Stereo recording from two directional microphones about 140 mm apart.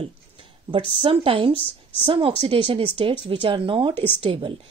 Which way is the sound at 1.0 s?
40° right (ahead or behind).